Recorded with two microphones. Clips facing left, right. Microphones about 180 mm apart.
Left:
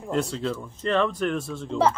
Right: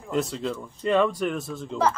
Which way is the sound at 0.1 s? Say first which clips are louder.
Even; centre (ahead or behind).